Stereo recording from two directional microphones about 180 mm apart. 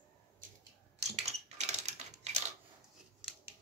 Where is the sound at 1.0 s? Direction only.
35° right (ahead or behind).